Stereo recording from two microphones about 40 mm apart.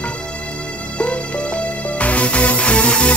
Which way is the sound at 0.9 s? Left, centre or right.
Left.